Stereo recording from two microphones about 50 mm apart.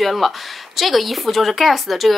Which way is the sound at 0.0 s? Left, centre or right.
Centre.